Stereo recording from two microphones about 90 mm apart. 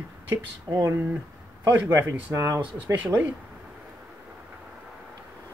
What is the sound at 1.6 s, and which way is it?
Speech, 30° right (ahead or behind).